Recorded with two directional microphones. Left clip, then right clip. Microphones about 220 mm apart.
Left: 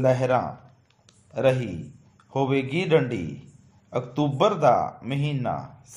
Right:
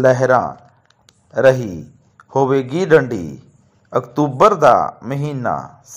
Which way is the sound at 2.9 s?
25° right (ahead or behind).